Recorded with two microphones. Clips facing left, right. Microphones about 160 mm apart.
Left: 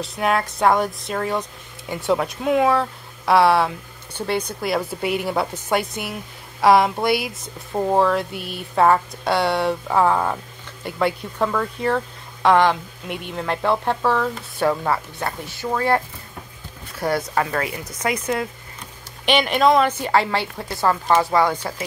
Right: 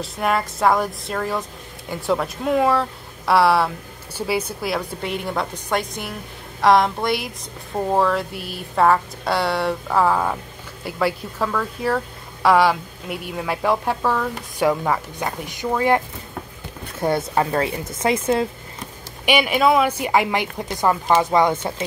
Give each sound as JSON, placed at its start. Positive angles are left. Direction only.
{"t": 0.0, "sound": "speech", "side_deg": 0}
{"t": 17.0, "sound": "speech", "side_deg": -25}
{"t": 19.2, "sound": "speech", "side_deg": -10}